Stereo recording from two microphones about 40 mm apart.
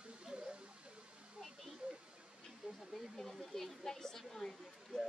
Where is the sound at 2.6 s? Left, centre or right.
Right.